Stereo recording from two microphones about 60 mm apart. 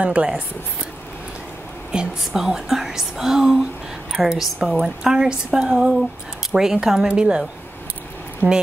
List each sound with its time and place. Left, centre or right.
0.0 s speech: right
1.9 s speech: centre